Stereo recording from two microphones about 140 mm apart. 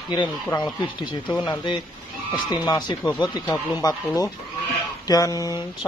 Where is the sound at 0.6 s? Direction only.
30° left (ahead or behind).